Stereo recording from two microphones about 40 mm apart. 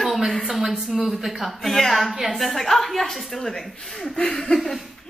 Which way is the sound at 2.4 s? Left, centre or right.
Centre.